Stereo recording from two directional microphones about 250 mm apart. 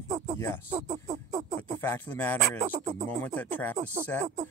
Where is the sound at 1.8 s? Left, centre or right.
Centre.